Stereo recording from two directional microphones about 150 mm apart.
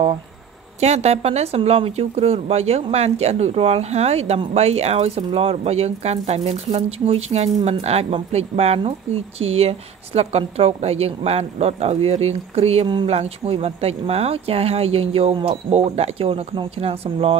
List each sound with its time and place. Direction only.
0.7 s speech: 45° right (ahead or behind)
12.8 s speech: 30° right (ahead or behind)
13.1 s speech: 45° right (ahead or behind)